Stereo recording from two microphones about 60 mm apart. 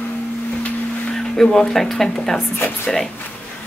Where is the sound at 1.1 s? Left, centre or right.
Centre.